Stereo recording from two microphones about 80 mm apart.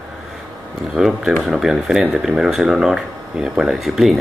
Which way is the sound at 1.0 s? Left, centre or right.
Centre.